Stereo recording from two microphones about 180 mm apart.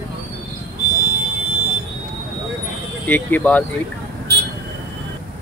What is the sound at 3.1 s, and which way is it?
Speech, 10° left (ahead or behind).